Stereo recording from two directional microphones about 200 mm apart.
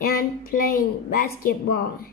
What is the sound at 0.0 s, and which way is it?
A woman's voice, 50° left (ahead or behind).